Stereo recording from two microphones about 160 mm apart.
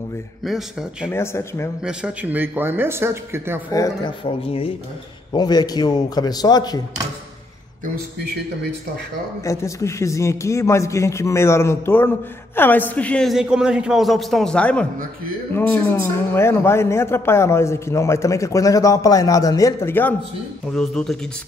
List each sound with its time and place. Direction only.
0.5 s a man's voice: 5° right (ahead or behind)
1.1 s a man's voice: 15° left (ahead or behind)
1.9 s speech: 10° right (ahead or behind)
3.7 s speech: 25° left (ahead or behind)
5.3 s a man's voice: 25° left (ahead or behind)
9.4 s a man's voice: 20° left (ahead or behind); by 21.2 s 5° left (ahead or behind)